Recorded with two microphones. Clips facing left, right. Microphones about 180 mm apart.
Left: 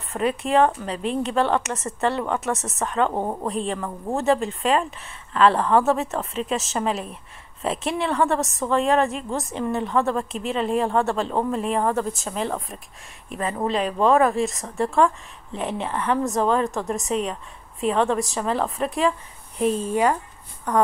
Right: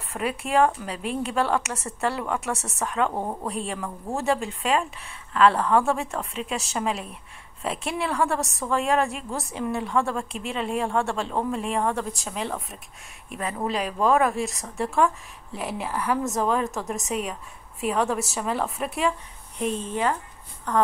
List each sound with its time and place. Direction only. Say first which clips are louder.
0.1 s a woman's voice: left 4 dB; 5° right (ahead or behind)
3.2 s speech: left 4 dB; 20° left (ahead or behind)
3.4 s a woman's voice: left 4 dB; centre (ahead or behind)
19.8 s speech: left 5 dB; 10° left (ahead or behind)